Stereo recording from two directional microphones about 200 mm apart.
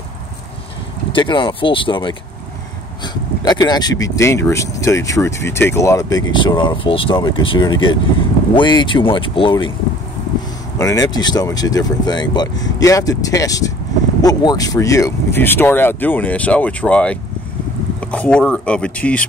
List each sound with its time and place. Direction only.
1.1 s speech: 25° left (ahead or behind)
3.4 s speech: 20° left (ahead or behind)
10.8 s speech: 15° left (ahead or behind)